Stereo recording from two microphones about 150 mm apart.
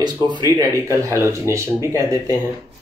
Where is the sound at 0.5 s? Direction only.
15° right (ahead or behind).